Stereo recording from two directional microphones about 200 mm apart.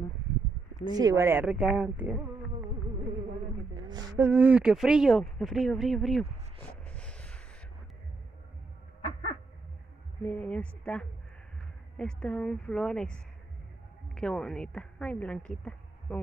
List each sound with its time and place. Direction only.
0.8 s a woman's voice: 20° right (ahead or behind)
3.7 s a sound: 20° right (ahead or behind)
4.2 s speech: 10° right (ahead or behind); by 7.4 s 5° left (ahead or behind)
10.2 s a woman's voice: 5° left (ahead or behind)